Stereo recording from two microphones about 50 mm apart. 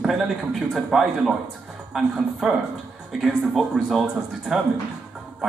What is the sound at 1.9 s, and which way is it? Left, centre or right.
A man's voice, centre.